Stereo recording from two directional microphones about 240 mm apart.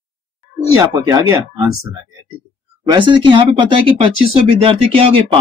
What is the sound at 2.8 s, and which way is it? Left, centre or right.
Speech, centre.